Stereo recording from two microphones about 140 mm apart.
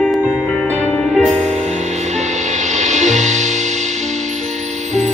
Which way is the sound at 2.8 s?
60° right (ahead or behind).